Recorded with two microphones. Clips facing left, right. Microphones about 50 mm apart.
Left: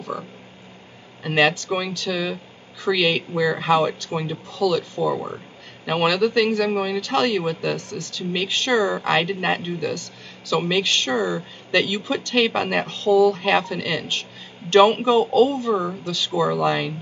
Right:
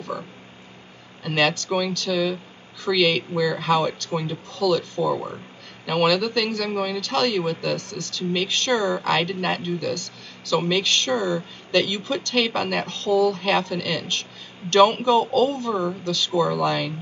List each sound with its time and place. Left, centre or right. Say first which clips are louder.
1.2 s a man's voice: left 3 dB; centre